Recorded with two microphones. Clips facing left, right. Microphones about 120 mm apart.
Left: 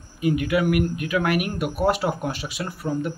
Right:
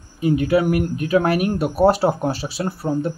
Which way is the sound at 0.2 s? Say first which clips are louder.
Right 4 dB; 30° right (ahead or behind).